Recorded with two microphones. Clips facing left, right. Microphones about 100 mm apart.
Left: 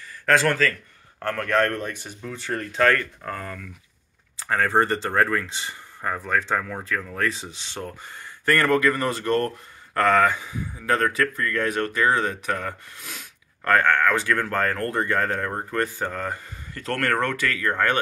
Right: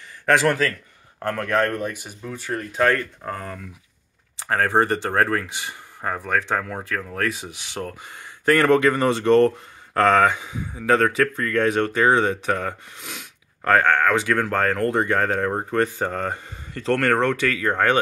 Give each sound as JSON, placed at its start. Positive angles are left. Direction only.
{"t": 0.3, "sound": "a man's voice", "side_deg": -15}